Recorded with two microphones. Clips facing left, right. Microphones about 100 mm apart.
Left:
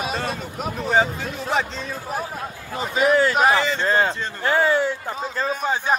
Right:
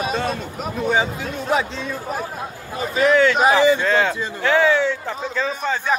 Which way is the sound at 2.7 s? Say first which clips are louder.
Right 2 dB; 15° left (ahead or behind).